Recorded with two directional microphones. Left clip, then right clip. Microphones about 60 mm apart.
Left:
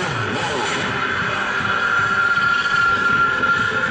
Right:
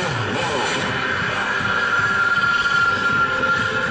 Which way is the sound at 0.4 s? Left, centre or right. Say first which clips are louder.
Right 1 dB; left.